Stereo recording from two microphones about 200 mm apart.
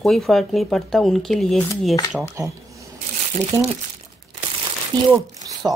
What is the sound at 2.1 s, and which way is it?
Speech, 10° right (ahead or behind).